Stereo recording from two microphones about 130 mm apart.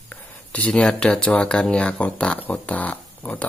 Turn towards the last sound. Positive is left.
turn(degrees=10)  # may be behind; listen again after turning